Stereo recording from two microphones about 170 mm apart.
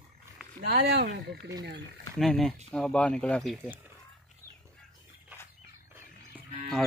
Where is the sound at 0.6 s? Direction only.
70° right (ahead or behind).